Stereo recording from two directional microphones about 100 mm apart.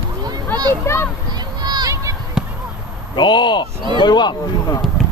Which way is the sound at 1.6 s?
45° right (ahead or behind).